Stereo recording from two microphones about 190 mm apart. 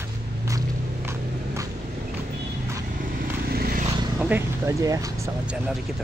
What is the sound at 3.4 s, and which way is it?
Vehicle, 50° right (ahead or behind).